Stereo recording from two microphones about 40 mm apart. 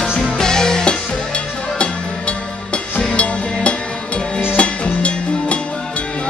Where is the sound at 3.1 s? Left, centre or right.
Left.